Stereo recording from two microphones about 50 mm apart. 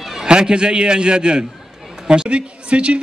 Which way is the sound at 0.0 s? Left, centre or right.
Centre.